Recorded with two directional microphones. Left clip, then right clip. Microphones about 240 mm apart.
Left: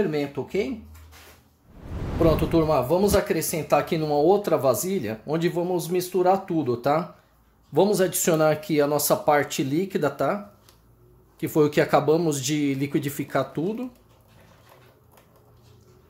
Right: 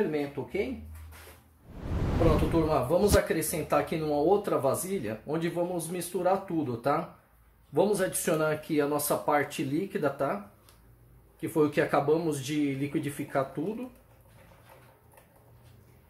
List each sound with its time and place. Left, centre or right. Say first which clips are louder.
0.1 s speech: left 5 dB; left
1.8 s a sound: left 5 dB; centre
2.5 s speech: left 5 dB; left
11.4 s speech: left 5 dB; left